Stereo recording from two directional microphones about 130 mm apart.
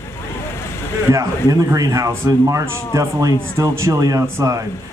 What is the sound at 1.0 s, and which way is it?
Speech, 25° right (ahead or behind).